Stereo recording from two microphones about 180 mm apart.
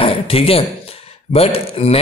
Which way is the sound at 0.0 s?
30° left (ahead or behind).